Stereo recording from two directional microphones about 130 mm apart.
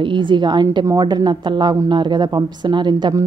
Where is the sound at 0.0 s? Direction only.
40° right (ahead or behind).